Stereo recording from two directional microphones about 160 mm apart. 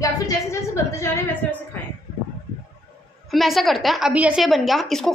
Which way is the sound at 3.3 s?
Centre (ahead or behind).